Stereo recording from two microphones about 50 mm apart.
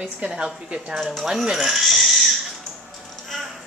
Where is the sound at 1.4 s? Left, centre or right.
Centre.